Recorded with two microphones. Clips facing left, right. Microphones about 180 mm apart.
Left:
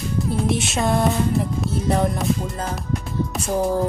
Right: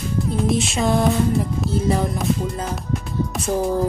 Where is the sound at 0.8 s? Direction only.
Centre (ahead or behind).